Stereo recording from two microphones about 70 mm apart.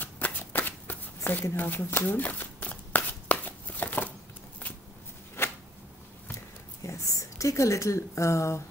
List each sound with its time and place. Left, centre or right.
0.0 s shuffling cards: left
5.4 s a sound: left
6.8 s speech: left